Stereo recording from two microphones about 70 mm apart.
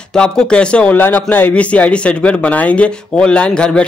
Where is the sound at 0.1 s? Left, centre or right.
Centre.